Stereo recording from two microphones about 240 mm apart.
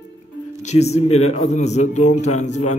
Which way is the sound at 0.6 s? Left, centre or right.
Left.